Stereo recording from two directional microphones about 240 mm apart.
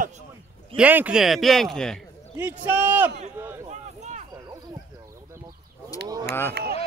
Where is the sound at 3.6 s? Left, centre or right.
Right.